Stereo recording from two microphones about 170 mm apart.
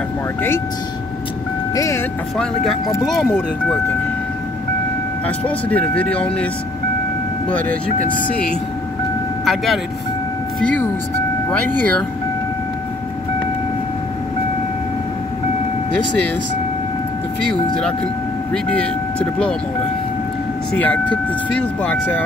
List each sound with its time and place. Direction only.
1.8 s speech: 15° left (ahead or behind)
2.3 s speech: centre (ahead or behind)
5.2 s speech: 10° left (ahead or behind)
7.4 s speech: 10° left (ahead or behind)
18.5 s speech: 5° left (ahead or behind)
20.7 s speech: 10° left (ahead or behind)